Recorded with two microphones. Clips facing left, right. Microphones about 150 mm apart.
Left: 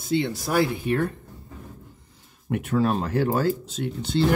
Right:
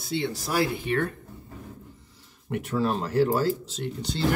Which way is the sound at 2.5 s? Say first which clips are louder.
Left 3 dB; 55° left (ahead or behind).